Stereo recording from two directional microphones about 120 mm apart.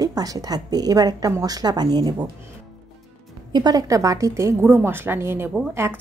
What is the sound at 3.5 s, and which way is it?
A woman's voice, 35° right (ahead or behind).